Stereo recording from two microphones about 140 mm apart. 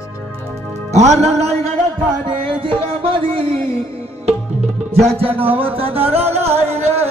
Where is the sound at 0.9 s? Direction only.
55° right (ahead or behind).